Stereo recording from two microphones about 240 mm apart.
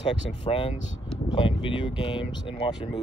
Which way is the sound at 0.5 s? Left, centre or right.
Left.